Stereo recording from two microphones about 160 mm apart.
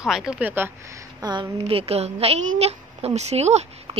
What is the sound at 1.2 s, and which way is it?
A woman's voice, 25° right (ahead or behind).